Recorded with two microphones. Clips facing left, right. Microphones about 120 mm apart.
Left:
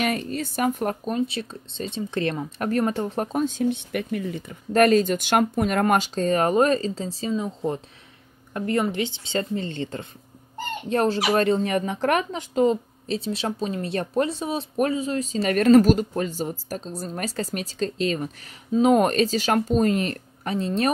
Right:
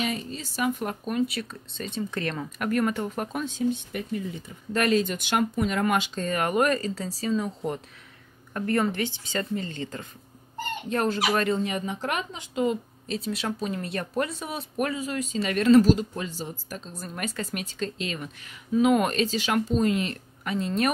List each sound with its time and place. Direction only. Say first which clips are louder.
0.0 s speech: left 5 dB; 60° left (ahead or behind); by 1.1 s 45° left (ahead or behind)
1.1 s a woman's voice: left 1 dB; 30° left (ahead or behind)
3.4 s a woman's voice: left 3 dB; 60° left (ahead or behind); by 11.6 s 30° left (ahead or behind)
11.6 s speech: left 6 dB; 55° left (ahead or behind)
12.5 s a woman's voice: left 5 dB; 30° left (ahead or behind)
15.4 s speech: left 3 dB; 50° left (ahead or behind)
20.6 s speech: left 2 dB; 30° left (ahead or behind)